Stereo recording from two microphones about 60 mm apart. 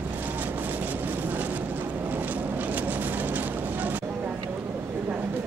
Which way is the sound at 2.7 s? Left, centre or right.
Right.